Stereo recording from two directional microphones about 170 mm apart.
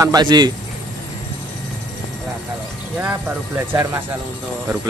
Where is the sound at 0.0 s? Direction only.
25° right (ahead or behind).